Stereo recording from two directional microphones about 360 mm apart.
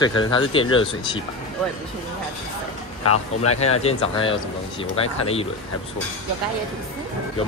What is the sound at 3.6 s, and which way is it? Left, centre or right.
Speech, centre.